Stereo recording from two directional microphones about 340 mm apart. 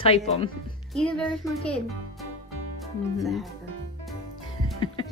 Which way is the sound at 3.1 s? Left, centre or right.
Centre.